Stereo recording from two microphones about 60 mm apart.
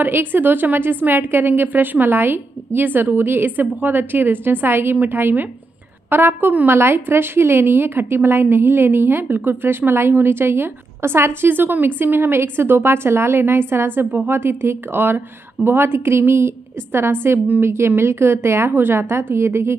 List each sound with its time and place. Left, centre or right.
0.0 s a woman's voice: right